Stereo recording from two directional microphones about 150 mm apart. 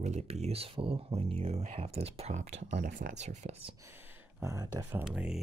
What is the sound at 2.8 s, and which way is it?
Speech, 65° right (ahead or behind).